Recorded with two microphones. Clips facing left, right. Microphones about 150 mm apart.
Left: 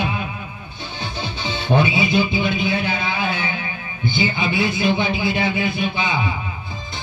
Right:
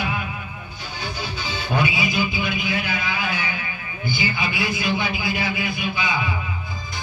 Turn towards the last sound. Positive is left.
turn(degrees=25)  # may be behind; listen again after turning